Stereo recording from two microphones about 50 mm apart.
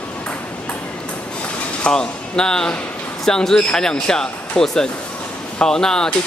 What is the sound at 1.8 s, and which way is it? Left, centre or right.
Speech, centre.